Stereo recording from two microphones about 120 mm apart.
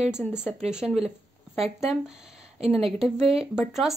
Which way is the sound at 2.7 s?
Centre (ahead or behind).